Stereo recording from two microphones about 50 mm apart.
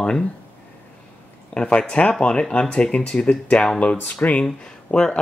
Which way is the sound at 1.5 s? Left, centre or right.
Left.